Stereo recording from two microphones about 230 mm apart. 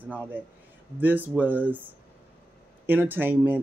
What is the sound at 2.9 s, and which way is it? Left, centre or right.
Speech, centre.